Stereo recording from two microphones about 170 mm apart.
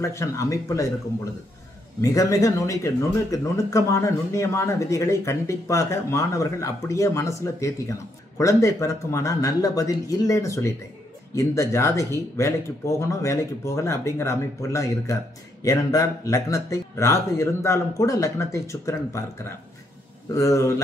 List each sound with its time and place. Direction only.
0.0 s speech: 15° left (ahead or behind)
20.3 s speech: 20° left (ahead or behind)